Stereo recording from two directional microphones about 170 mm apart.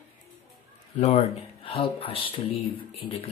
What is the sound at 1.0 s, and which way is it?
Speech, 40° left (ahead or behind).